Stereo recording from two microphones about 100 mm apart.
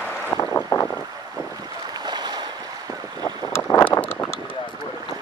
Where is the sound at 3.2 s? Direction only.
25° left (ahead or behind).